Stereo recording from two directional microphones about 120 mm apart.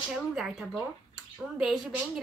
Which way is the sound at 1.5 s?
Centre (ahead or behind).